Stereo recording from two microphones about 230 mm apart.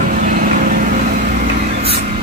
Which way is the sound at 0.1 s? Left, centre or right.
Right.